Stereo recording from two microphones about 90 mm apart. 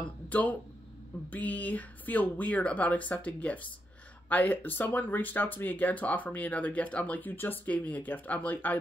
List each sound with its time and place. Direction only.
0.3 s speech: 15° left (ahead or behind)